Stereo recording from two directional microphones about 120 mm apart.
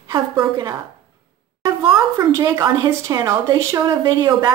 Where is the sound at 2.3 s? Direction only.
30° right (ahead or behind).